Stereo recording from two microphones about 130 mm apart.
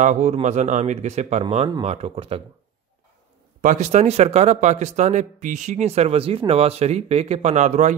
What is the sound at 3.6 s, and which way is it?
Speech, 65° right (ahead or behind).